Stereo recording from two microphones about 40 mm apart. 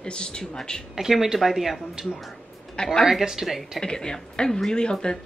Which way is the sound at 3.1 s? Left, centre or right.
Centre.